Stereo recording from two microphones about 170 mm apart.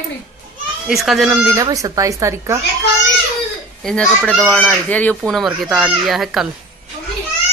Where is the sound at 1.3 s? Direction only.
15° right (ahead or behind).